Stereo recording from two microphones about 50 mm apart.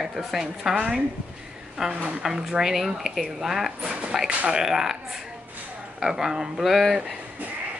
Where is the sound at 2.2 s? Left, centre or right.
Centre.